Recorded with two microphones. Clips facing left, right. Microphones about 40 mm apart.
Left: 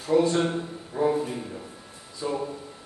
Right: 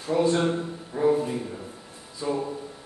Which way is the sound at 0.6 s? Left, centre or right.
Centre.